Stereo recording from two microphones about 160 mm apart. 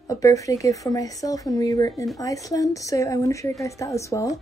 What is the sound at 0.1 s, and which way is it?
Speech, 20° left (ahead or behind).